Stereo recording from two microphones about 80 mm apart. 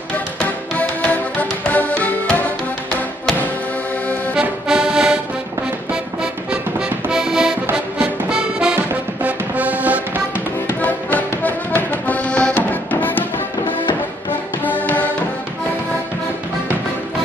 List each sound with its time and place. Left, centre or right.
0.4 s music: centre
4.4 s accordion: centre
5.9 s music: centre
10.3 s music: left